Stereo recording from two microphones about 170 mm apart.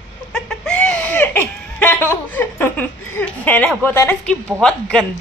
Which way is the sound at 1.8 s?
10° left (ahead or behind).